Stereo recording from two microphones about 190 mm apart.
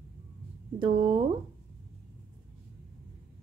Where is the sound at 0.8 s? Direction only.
25° right (ahead or behind).